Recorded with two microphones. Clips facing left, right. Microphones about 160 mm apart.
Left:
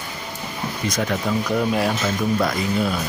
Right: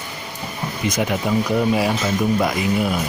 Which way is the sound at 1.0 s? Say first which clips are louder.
Right 3 dB; 10° right (ahead or behind).